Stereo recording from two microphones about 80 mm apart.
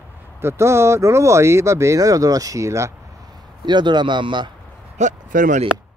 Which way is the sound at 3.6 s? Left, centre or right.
Right.